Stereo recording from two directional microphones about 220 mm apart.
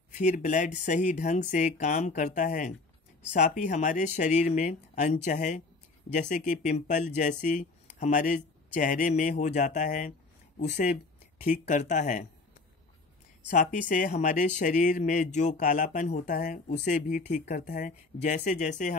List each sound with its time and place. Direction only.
0.1 s speech: 30° left (ahead or behind)
13.5 s speech: 35° left (ahead or behind)